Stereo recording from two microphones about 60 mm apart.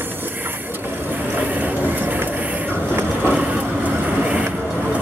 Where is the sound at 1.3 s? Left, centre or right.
Right.